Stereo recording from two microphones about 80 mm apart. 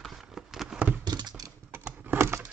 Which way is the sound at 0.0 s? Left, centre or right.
Centre.